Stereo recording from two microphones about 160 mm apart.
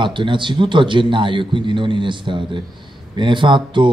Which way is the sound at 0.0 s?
30° right (ahead or behind).